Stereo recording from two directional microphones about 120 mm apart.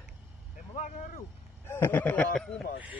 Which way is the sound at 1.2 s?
20° left (ahead or behind).